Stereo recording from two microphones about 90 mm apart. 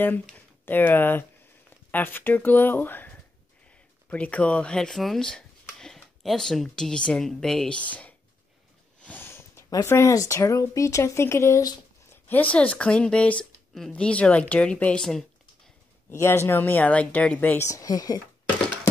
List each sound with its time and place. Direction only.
0.7 s speech: 20° left (ahead or behind)
9.0 s sniff: 25° left (ahead or behind)
9.8 s speech: 35° left (ahead or behind); by 15.7 s 5° left (ahead or behind)
16.1 s speech: 30° left (ahead or behind)
17.6 s speech: 40° left (ahead or behind)